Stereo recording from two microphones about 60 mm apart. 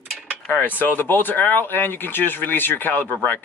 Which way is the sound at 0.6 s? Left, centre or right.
Left.